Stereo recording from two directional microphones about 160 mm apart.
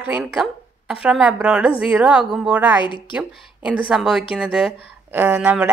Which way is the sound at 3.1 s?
5° right (ahead or behind).